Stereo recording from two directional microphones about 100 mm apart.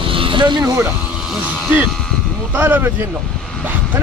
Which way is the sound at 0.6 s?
30° right (ahead or behind).